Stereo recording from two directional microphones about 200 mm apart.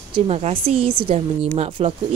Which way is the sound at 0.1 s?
30° right (ahead or behind).